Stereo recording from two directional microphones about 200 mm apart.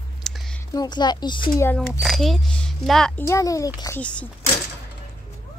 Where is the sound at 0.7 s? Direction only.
20° left (ahead or behind).